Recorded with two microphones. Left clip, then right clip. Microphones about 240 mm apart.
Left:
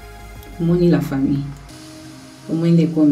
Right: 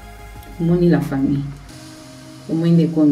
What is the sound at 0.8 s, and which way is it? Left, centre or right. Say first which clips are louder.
Speech: even; centre.